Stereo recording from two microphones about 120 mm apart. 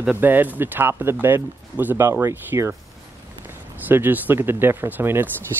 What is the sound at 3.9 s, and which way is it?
Speech, 15° right (ahead or behind).